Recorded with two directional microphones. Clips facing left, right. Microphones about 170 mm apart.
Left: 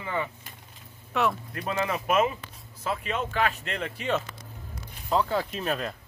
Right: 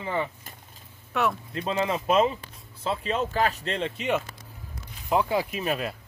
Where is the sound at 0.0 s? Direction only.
30° right (ahead or behind).